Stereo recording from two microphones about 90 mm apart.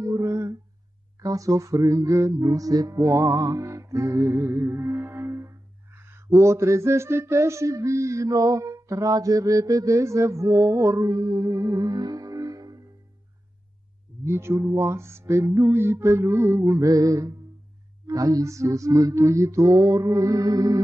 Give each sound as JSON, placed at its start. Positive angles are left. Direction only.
{"t": 0.0, "sound": "humming", "side_deg": -35}
{"t": 1.2, "sound": "music", "side_deg": -40}
{"t": 14.2, "sound": "a sound", "side_deg": -30}
{"t": 18.0, "sound": "music", "side_deg": -40}